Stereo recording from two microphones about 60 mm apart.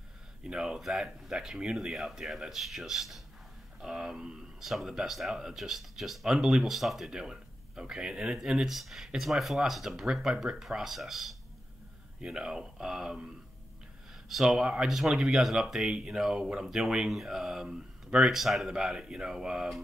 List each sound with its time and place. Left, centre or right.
0.4 s speech: centre
10.6 s speech: centre
14.3 s speech: centre